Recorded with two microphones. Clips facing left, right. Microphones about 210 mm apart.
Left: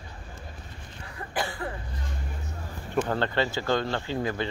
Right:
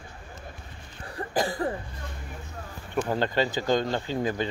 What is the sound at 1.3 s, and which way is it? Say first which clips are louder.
Speech: right 5 dB; 40° right (ahead or behind).